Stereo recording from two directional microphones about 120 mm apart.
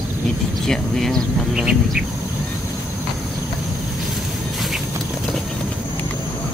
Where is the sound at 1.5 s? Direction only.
5° right (ahead or behind).